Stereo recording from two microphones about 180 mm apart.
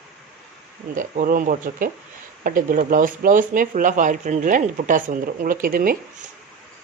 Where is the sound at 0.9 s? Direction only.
50° right (ahead or behind).